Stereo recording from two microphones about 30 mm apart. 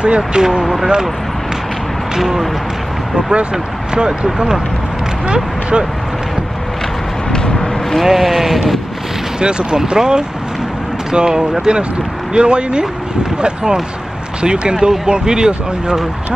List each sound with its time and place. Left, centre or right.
0.0 s speech: right
0.4 s speech: right
2.1 s speech: centre
3.2 s speech: right
7.3 s vehicle: left
8.0 s speech: centre
9.4 s speech: right
14.4 s speech: right